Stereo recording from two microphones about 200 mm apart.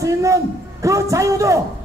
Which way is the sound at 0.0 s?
15° right (ahead or behind).